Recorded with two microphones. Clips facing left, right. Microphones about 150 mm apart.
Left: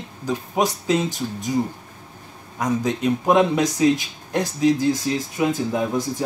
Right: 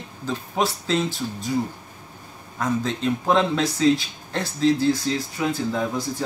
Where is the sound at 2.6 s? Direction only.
15° left (ahead or behind).